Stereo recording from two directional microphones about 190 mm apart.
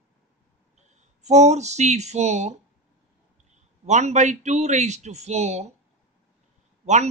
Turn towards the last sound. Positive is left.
turn(degrees=-40)  # may be behind; listen again after turning